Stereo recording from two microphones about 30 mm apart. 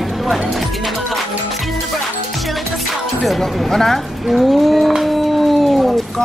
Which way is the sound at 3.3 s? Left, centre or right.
Centre.